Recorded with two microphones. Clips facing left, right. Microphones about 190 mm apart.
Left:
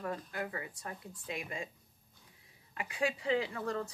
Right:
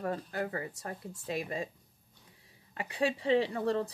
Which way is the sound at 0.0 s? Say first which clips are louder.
Right 4 dB; 35° right (ahead or behind).